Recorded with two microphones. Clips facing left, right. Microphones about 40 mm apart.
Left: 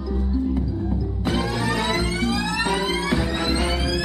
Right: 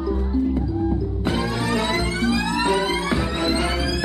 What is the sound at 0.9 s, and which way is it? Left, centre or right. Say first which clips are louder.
Music: right 1 dB; right.